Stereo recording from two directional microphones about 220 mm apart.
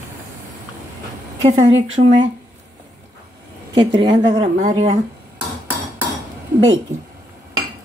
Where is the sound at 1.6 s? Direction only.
60° right (ahead or behind).